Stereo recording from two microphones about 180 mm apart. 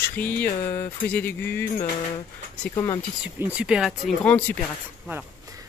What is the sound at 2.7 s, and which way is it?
Speech, 20° left (ahead or behind).